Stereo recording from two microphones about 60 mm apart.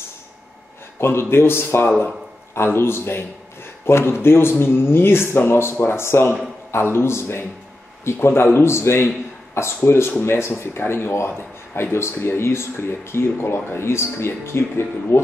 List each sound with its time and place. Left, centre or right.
0.9 s speech: left